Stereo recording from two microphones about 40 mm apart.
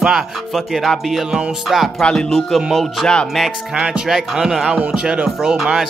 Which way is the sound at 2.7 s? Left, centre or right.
Centre.